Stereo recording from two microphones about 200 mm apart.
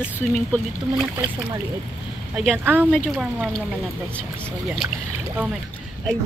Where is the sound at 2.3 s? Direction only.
Centre (ahead or behind).